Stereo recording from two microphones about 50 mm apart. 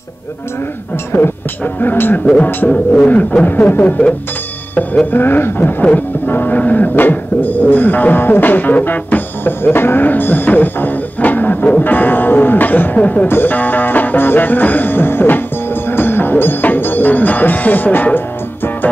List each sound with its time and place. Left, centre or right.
1.1 s music: left
1.6 s speech: left
5.1 s speech: left
13.3 s music: left